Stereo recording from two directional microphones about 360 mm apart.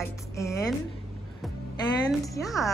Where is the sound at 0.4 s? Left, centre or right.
Centre.